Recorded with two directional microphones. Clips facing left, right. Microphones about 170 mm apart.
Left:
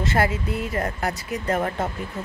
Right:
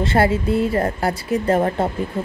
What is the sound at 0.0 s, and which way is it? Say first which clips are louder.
Speech: right 5 dB; 30° right (ahead or behind).